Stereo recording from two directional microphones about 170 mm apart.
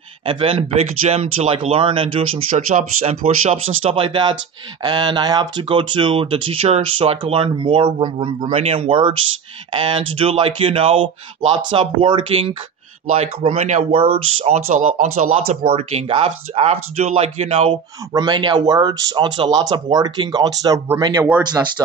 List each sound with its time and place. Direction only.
0.3 s speech: 35° right (ahead or behind)